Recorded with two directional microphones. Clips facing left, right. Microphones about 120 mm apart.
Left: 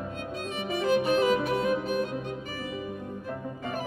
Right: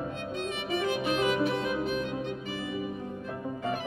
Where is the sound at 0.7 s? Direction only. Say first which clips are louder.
Left 5 dB; 40° left (ahead or behind).